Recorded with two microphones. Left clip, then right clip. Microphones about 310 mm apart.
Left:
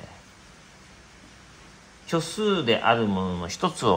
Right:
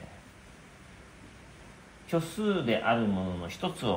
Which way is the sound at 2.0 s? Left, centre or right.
Left.